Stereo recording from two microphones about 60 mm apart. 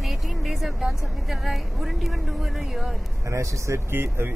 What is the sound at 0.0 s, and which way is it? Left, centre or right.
A woman's voice, centre.